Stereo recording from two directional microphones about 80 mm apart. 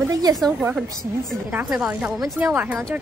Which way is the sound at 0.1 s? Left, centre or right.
Right.